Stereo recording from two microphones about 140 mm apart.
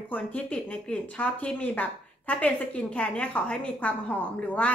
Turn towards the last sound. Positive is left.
turn(degrees=10)  # may be behind; listen again after turning